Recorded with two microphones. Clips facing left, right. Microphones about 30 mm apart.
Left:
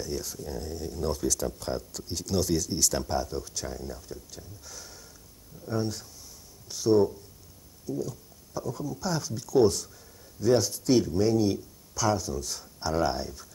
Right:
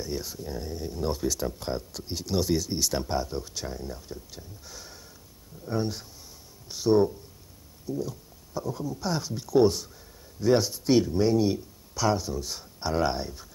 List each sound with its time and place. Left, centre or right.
0.0 s speech: centre